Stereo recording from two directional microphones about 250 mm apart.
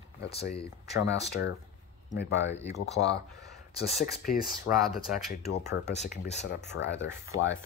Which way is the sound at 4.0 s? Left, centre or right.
Left.